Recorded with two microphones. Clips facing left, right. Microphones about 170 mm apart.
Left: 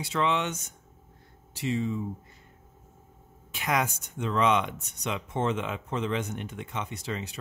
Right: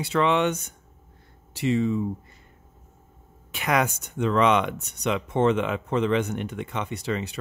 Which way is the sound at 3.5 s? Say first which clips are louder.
Right 4 dB; 70° right (ahead or behind).